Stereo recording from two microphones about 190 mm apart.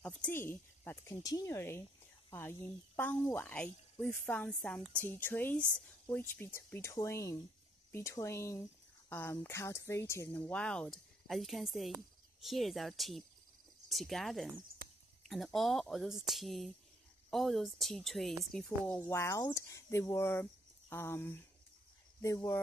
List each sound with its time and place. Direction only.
0.2 s speech: 10° left (ahead or behind)
3.0 s speech: 10° left (ahead or behind)
18.9 s speech: 15° left (ahead or behind)